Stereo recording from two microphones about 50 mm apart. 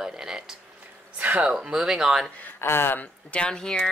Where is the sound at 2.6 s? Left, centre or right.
Left.